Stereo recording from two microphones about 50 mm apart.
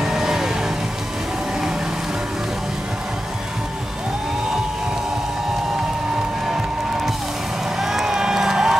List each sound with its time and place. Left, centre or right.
0.0 s music: centre
7.8 s crowd: centre